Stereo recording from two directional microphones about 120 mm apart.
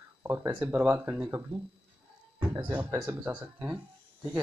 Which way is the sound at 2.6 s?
15° right (ahead or behind).